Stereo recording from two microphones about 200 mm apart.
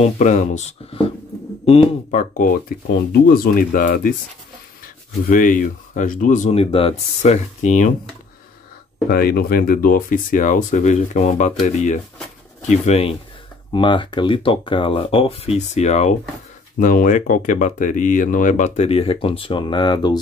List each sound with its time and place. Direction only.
0.0 s speech: 35° left (ahead or behind)
9.1 s speech: 50° left (ahead or behind); by 20.2 s 20° left (ahead or behind)